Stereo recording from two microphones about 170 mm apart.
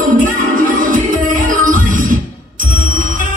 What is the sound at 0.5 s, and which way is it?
Music, 55° right (ahead or behind).